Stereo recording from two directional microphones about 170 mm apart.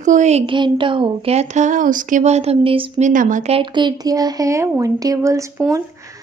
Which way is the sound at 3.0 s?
50° right (ahead or behind).